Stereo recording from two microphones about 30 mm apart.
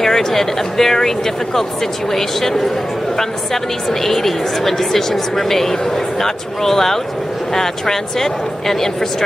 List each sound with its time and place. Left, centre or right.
0.0 s a woman's voice: centre
4.0 s a woman's voice: centre